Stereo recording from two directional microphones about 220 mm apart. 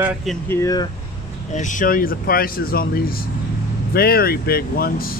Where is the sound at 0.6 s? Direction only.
15° left (ahead or behind).